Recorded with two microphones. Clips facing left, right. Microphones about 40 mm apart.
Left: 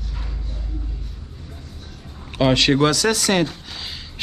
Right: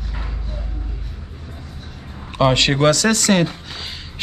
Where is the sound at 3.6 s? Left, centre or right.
Centre.